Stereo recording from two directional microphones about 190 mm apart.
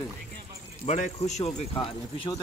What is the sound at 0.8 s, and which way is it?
Speech, 40° left (ahead or behind).